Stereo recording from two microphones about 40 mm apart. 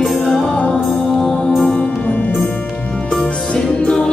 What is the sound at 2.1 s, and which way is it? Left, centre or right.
Music, left.